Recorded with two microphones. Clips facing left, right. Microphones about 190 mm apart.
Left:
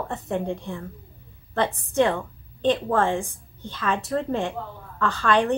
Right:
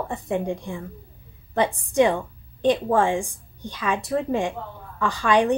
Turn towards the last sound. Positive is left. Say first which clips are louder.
# right 2 dB
turn(degrees=-15)  # may be behind; listen again after turning